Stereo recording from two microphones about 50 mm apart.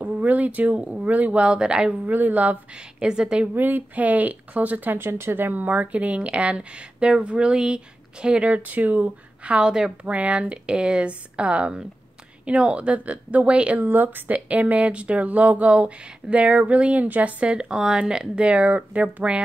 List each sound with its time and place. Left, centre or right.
0.0 s speech: right
2.0 s speech: right
2.7 s a woman's voice: centre
3.5 s speech: right
4.9 s speech: right; by 9.9 s centre
10.0 s speech: right
13.8 s speech: right